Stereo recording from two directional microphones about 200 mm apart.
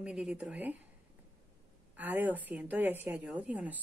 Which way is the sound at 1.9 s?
10° right (ahead or behind).